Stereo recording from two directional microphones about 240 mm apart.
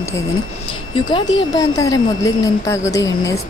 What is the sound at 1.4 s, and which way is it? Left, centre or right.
Speech, centre.